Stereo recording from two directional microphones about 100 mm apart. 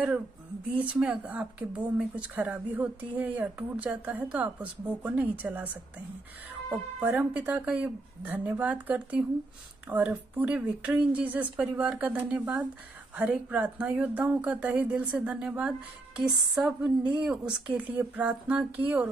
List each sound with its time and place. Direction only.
0.9 s speech: 10° right (ahead or behind)
6.7 s speech: 15° right (ahead or behind)